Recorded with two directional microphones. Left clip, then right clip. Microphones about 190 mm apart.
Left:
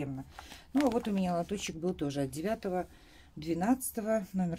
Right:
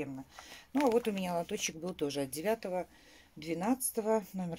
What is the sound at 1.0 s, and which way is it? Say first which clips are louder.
Speech: even; 35° right (ahead or behind).